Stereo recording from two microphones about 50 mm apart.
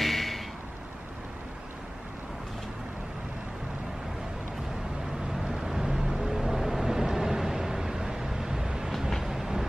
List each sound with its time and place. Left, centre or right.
0.0 s a sound: centre
5.3 s vehicle: centre
9.2 s train: centre